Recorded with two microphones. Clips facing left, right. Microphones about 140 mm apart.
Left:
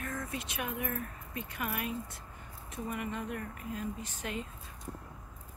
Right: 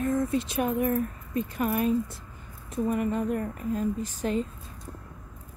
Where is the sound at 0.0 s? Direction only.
30° right (ahead or behind).